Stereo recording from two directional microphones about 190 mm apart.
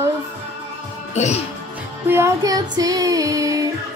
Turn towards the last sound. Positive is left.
turn(degrees=-20)  # may be behind; listen again after turning